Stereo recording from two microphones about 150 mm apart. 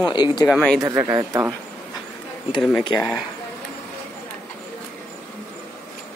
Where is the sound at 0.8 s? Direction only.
20° right (ahead or behind).